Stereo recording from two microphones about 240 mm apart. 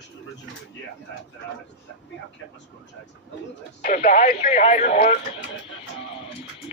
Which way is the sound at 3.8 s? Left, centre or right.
Left.